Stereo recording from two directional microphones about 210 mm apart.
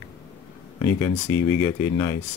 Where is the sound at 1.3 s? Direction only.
15° left (ahead or behind).